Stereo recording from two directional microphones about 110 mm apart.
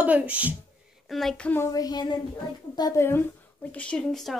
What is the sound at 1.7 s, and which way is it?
Speech, 35° left (ahead or behind).